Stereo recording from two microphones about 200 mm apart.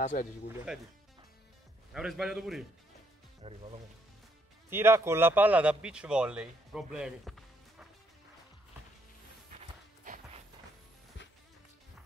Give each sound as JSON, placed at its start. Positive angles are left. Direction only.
{"t": 0.0, "sound": "speech", "side_deg": 40}
{"t": 0.7, "sound": "a man's voice", "side_deg": 0}
{"t": 2.0, "sound": "a man's voice", "side_deg": -5}
{"t": 3.4, "sound": "speech", "side_deg": -25}
{"t": 4.6, "sound": "a man's voice", "side_deg": -10}
{"t": 10.0, "sound": "music", "side_deg": -40}